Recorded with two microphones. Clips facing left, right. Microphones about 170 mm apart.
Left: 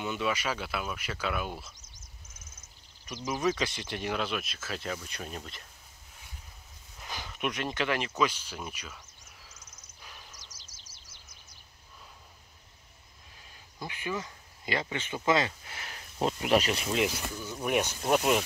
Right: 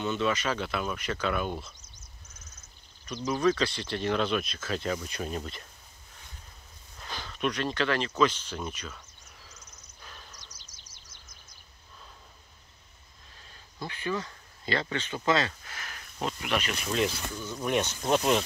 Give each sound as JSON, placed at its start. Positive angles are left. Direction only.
{"t": 0.0, "sound": "speech", "side_deg": 10}
{"t": 3.3, "sound": "speech", "side_deg": 20}
{"t": 7.0, "sound": "speech", "side_deg": 15}
{"t": 10.0, "sound": "a sound", "side_deg": 10}
{"t": 13.7, "sound": "speech", "side_deg": 15}